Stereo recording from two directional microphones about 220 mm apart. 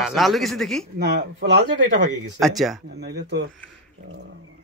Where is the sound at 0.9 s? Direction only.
50° right (ahead or behind).